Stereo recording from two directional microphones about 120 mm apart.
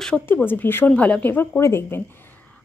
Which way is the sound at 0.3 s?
15° left (ahead or behind).